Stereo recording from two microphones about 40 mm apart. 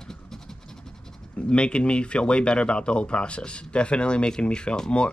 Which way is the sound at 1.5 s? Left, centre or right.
Left.